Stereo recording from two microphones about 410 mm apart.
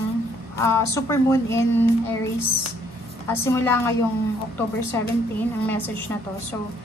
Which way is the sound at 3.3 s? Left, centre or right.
Centre.